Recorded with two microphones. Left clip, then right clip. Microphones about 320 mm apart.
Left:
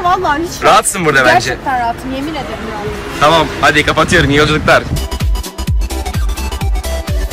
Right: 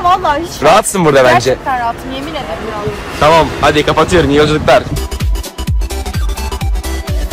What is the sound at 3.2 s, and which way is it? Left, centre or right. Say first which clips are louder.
Speech: right 1 dB; centre.